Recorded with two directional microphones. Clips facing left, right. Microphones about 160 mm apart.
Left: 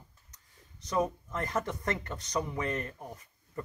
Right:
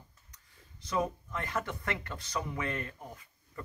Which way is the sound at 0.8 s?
40° left (ahead or behind).